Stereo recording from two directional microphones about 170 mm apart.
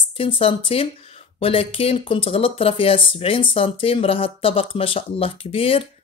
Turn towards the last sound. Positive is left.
turn(degrees=35)  # may be behind; listen again after turning